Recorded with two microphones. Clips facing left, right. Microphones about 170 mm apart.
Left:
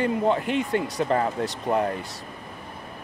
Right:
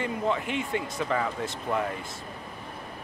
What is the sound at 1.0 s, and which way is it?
Speech, 40° left (ahead or behind).